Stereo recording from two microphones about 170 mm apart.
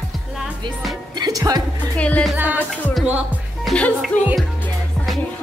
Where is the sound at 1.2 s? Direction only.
20° right (ahead or behind).